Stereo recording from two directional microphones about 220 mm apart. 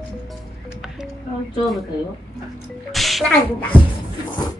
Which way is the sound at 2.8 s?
Centre (ahead or behind).